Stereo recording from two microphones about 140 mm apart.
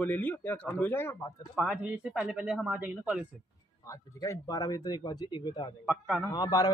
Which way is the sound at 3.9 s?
25° left (ahead or behind).